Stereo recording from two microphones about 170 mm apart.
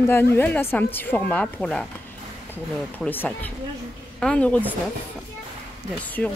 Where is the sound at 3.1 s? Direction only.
10° left (ahead or behind).